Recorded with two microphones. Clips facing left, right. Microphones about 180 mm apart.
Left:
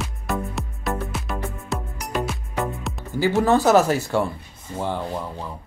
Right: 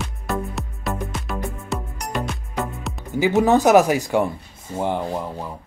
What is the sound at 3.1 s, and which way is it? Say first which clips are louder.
Speech: right 2 dB; 20° right (ahead or behind).